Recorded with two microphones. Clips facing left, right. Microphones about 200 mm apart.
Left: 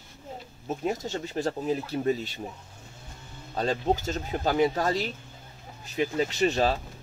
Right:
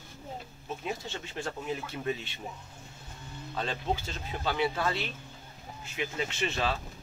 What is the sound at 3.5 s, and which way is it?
Speech, 40° left (ahead or behind).